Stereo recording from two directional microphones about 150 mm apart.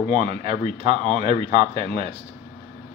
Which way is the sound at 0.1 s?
40° right (ahead or behind).